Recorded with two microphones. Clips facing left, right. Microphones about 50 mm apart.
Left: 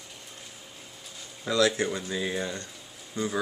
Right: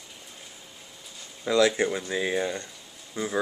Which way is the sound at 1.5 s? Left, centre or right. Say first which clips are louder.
Right 3 dB; right.